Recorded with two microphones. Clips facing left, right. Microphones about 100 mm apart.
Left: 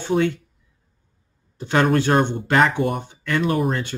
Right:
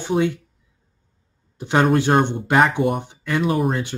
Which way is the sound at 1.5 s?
15° right (ahead or behind).